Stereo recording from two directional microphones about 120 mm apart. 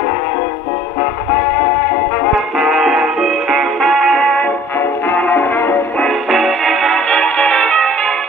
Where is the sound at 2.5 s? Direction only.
5° right (ahead or behind).